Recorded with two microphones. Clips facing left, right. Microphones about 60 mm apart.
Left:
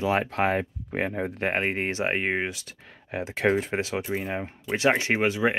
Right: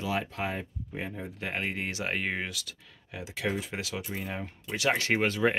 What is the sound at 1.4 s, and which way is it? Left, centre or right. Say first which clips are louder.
Speech: left 6 dB; left.